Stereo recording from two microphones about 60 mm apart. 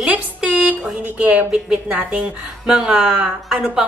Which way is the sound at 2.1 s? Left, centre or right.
Centre.